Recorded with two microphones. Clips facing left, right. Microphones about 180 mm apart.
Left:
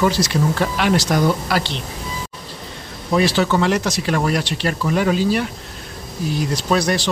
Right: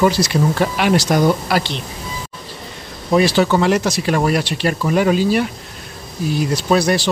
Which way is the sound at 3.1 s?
15° right (ahead or behind).